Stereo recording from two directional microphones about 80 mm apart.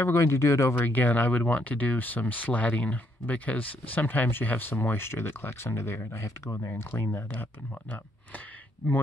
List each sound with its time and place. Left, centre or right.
0.0 s speech: left
0.7 s speech: left